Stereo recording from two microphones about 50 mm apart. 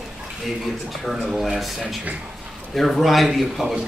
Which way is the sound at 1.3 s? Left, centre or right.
Centre.